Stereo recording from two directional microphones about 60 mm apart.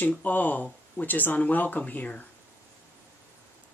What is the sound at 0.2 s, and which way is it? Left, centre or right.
Speech, left.